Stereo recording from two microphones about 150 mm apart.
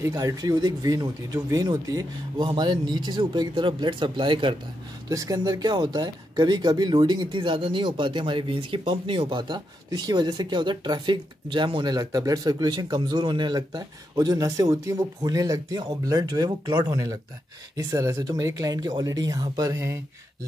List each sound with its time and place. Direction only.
0.0 s speech: 20° right (ahead or behind)